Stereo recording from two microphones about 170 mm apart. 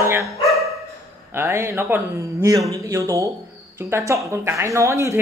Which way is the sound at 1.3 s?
15° right (ahead or behind).